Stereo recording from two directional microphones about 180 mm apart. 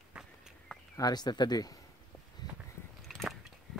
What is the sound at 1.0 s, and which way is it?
Speech, 25° left (ahead or behind).